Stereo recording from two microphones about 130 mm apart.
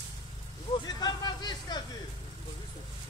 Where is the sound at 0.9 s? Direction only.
30° left (ahead or behind).